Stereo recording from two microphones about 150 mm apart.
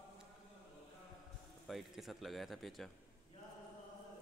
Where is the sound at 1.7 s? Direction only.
Centre (ahead or behind).